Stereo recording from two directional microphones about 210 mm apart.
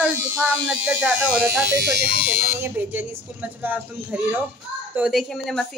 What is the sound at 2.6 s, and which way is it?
A woman's voice, 10° right (ahead or behind).